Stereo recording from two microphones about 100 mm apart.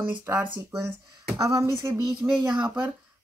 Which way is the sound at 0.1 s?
20° right (ahead or behind).